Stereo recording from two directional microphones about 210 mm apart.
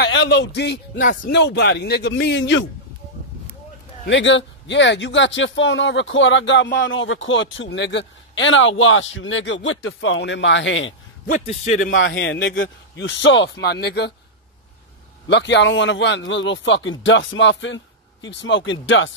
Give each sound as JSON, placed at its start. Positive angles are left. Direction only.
{"t": 0.0, "sound": "a man's voice", "side_deg": 60}
{"t": 4.1, "sound": "speech", "side_deg": 60}
{"t": 11.2, "sound": "a man's voice", "side_deg": 35}
{"t": 11.9, "sound": "speech", "side_deg": 60}
{"t": 15.2, "sound": "speech", "side_deg": 55}